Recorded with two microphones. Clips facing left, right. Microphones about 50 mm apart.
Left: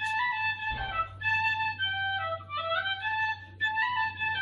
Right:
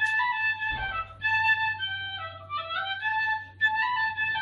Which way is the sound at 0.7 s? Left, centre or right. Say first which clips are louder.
Right 1 dB; centre.